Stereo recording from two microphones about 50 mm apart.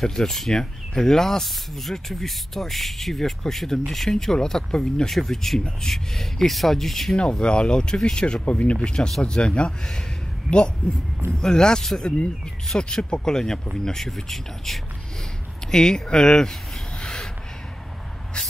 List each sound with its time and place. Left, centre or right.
0.0 s speech: centre
7.2 s speech: centre
17.0 s a sound: centre